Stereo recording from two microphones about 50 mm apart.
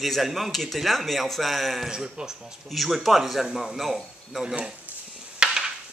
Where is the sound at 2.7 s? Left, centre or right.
Centre.